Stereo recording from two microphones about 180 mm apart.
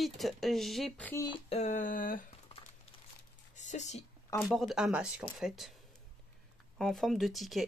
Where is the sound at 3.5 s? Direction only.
40° left (ahead or behind).